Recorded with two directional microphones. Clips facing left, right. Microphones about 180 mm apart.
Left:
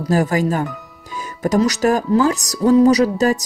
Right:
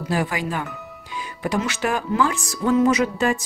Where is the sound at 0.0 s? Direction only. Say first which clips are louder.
Left 7 dB; 40° left (ahead or behind).